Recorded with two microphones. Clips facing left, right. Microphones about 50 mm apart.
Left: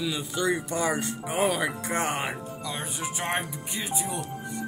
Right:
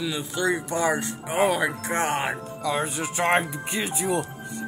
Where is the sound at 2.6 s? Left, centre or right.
Right.